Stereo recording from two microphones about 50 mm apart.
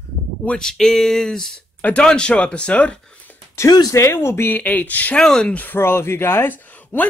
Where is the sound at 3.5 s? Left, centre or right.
Left.